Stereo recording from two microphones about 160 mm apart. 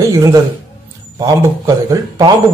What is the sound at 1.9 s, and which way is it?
Speech, 25° right (ahead or behind).